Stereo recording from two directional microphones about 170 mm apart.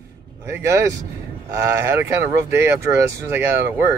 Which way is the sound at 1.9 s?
15° right (ahead or behind).